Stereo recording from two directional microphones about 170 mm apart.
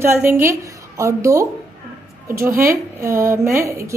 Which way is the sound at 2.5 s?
55° right (ahead or behind).